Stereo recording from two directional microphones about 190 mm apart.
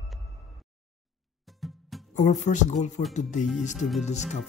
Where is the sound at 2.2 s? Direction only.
35° left (ahead or behind).